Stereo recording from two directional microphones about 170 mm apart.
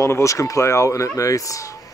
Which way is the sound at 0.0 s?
15° left (ahead or behind).